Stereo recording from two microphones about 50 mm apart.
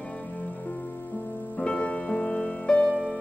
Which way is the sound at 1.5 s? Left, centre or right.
Left.